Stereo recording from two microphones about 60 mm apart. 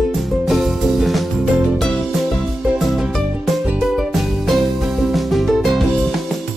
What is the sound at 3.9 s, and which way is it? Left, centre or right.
Music, centre.